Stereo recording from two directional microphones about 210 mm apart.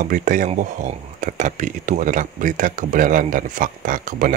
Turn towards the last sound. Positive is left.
turn(degrees=-40)  # may be behind; listen again after turning